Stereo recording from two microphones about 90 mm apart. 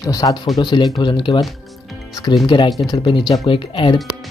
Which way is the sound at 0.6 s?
55° left (ahead or behind).